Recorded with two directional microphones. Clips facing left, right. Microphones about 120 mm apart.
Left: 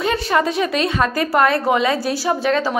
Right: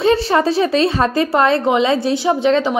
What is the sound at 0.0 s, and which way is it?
A woman's voice, 30° right (ahead or behind).